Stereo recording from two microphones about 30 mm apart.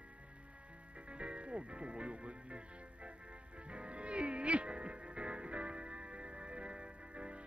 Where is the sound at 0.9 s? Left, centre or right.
Right.